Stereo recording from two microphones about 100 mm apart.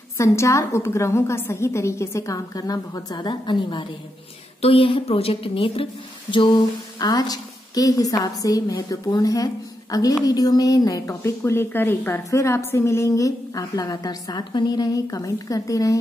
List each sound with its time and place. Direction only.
0.2 s a woman's voice: 30° left (ahead or behind); by 3.8 s 50° left (ahead or behind)
4.6 s a woman's voice: 75° left (ahead or behind)
6.3 s a sound: 55° left (ahead or behind)
7.0 s a woman's voice: 40° left (ahead or behind)